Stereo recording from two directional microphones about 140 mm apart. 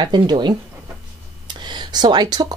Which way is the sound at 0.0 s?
30° right (ahead or behind).